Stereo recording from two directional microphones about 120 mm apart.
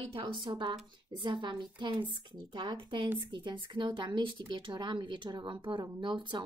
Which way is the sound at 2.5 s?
40° right (ahead or behind).